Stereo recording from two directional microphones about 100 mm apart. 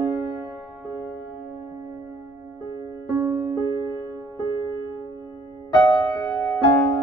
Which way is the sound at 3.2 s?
25° right (ahead or behind).